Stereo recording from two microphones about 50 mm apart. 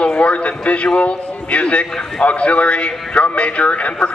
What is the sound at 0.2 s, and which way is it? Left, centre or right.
A man's voice, left.